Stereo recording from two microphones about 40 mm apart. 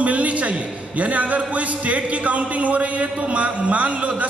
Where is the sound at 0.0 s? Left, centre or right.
Right.